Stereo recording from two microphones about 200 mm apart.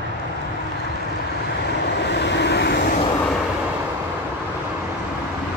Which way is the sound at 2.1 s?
60° left (ahead or behind).